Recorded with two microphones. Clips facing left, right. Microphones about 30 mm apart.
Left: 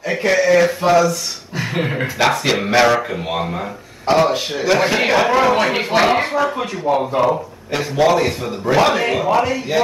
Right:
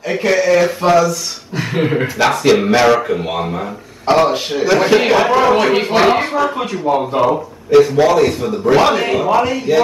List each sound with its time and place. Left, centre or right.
0.1 s a man's voice: centre
7.7 s a man's voice: centre
8.6 s a man's voice: centre